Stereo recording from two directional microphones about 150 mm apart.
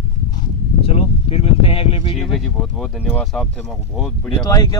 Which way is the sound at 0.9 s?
40° left (ahead or behind).